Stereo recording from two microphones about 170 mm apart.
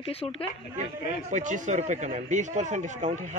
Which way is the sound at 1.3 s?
45° right (ahead or behind).